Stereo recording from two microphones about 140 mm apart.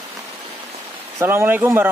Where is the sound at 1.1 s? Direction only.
15° right (ahead or behind).